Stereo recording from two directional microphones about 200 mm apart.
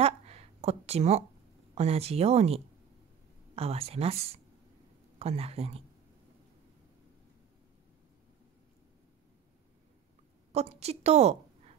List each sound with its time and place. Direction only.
0.0 s a sound: 30° right (ahead or behind)
1.8 s speech: 30° right (ahead or behind)
10.5 s speech: 30° right (ahead or behind)